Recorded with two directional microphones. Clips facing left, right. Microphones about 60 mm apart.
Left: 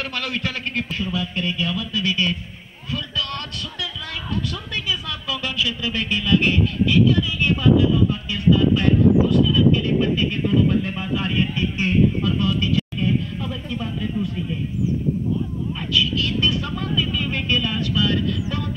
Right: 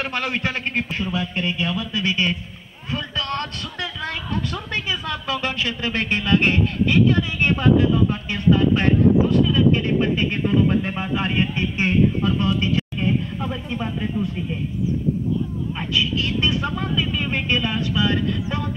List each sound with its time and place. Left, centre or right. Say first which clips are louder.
0.0 s a man's voice: right 2 dB; right
15.9 s vehicle: left 1 dB; right